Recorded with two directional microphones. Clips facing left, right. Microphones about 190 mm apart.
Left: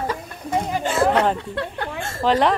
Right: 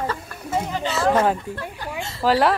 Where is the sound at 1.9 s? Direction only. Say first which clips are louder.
Left 2 dB; 50° left (ahead or behind).